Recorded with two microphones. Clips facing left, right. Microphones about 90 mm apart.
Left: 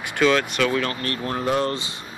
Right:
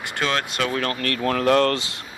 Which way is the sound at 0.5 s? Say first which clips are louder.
Left 2 dB; 40° right (ahead or behind).